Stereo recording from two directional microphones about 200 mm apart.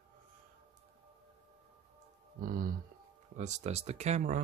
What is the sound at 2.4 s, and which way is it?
Speech, 45° right (ahead or behind).